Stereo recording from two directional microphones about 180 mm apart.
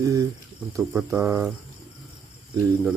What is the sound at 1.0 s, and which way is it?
Speech, 15° right (ahead or behind).